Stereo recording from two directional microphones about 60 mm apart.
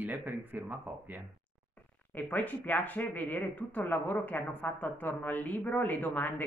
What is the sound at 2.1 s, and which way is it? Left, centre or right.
Speech, left.